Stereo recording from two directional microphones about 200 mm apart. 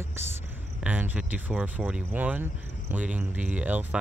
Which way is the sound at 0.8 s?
10° right (ahead or behind).